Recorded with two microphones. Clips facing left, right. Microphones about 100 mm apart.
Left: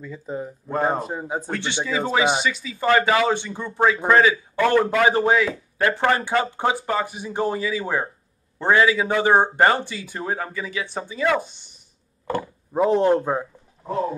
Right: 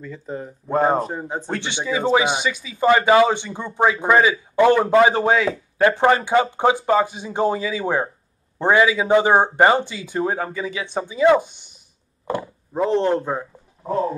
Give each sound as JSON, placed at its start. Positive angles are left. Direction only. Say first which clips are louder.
{"t": 0.0, "sound": "speech", "louder": "even", "side_deg": 5}
{"t": 0.7, "sound": "speech", "louder": "right 5 dB", "side_deg": -25}
{"t": 1.0, "sound": "a man's voice", "louder": "even", "side_deg": 5}
{"t": 1.5, "sound": "speech", "louder": "right 2 dB", "side_deg": -20}
{"t": 12.7, "sound": "a man's voice", "louder": "left 1 dB", "side_deg": 10}